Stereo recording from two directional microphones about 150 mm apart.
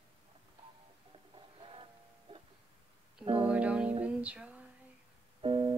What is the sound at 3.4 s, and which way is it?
Music, 10° right (ahead or behind).